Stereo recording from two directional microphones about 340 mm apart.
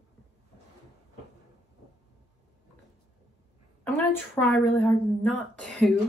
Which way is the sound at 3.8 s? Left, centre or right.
Centre.